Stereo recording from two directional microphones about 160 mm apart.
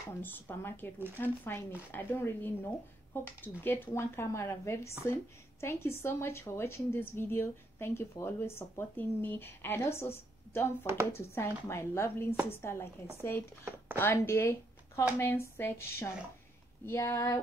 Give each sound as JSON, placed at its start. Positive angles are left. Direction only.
{"t": 0.2, "sound": "speech", "side_deg": 15}